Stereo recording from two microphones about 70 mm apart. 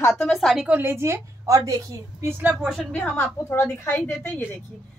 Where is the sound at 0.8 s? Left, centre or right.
Right.